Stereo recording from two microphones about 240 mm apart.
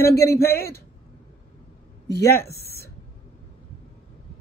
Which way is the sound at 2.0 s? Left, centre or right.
Left.